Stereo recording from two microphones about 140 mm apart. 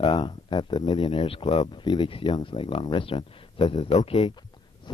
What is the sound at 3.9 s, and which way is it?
Speech, 50° left (ahead or behind).